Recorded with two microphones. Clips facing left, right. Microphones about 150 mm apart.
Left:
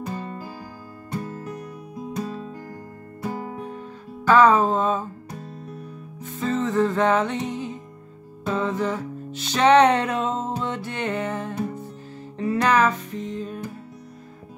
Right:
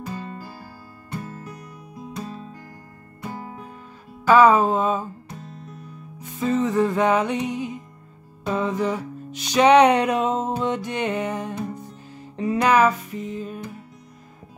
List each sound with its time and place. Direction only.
2.1 s music: 30° left (ahead or behind)
4.3 s music: 10° right (ahead or behind)
6.1 s music: 15° right (ahead or behind)